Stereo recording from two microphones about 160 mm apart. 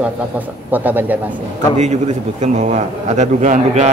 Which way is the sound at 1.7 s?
45° right (ahead or behind).